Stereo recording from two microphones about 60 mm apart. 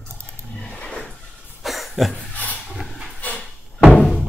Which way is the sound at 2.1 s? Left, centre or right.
Left.